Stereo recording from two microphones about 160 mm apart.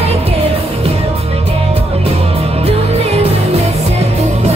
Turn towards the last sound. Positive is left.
turn(degrees=-40)  # may be behind; listen again after turning